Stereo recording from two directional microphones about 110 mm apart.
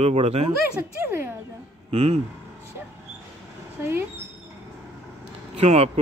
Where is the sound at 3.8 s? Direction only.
25° right (ahead or behind).